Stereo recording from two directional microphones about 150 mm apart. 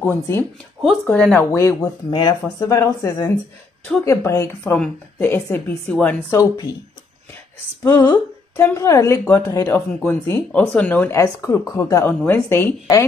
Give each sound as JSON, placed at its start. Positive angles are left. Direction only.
{"t": 0.0, "sound": "speech", "side_deg": 15}
{"t": 2.0, "sound": "speech", "side_deg": 30}
{"t": 6.3, "sound": "speech", "side_deg": 25}
{"t": 7.8, "sound": "speech", "side_deg": 25}
{"t": 8.1, "sound": "speech", "side_deg": 15}